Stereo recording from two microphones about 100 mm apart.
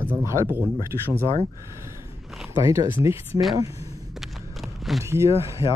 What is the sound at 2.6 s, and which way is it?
Speech, 30° right (ahead or behind).